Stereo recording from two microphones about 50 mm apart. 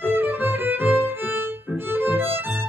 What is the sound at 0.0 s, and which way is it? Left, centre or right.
Violin, right.